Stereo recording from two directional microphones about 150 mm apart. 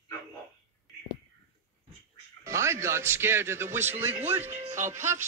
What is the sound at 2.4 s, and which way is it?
A man's voice, 20° right (ahead or behind).